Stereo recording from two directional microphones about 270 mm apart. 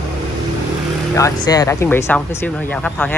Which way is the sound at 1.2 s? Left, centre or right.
Centre.